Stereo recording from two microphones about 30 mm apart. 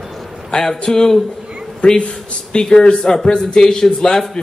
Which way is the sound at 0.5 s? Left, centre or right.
Left.